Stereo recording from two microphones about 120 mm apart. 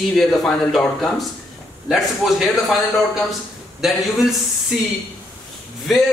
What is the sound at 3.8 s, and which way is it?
Speech, centre (ahead or behind).